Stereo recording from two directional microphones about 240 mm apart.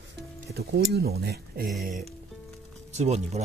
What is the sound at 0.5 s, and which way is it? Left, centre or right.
Speech, right.